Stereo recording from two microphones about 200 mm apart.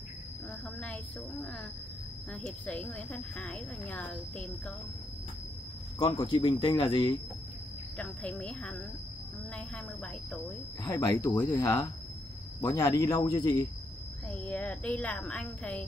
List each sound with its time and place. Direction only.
2.4 s speech: 5° left (ahead or behind)
5.9 s speech: 25° left (ahead or behind)
8.0 s a woman's voice: 5° left (ahead or behind)
10.8 s speech: 20° left (ahead or behind)
14.4 s a woman's voice: 5° left (ahead or behind)